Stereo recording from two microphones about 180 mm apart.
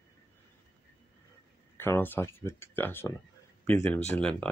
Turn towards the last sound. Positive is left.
turn(degrees=5)  # may be behind; listen again after turning